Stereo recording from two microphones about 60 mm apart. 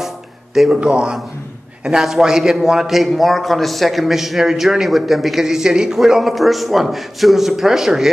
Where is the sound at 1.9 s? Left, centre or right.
Centre.